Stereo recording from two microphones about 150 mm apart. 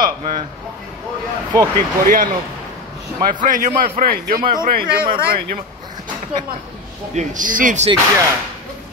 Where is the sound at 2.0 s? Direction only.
70° right (ahead or behind).